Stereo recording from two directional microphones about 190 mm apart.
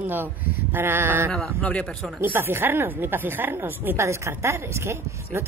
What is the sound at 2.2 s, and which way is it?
A woman's voice, 10° right (ahead or behind).